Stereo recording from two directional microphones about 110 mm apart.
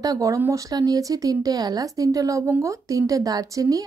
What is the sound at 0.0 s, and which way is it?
A woman's voice, 30° right (ahead or behind).